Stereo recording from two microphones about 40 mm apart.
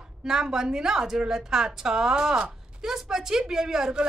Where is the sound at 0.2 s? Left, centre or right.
Centre.